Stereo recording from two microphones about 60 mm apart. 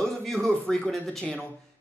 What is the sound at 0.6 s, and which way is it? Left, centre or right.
Speech, centre.